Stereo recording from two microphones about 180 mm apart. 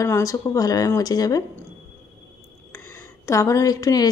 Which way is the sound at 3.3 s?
15° left (ahead or behind).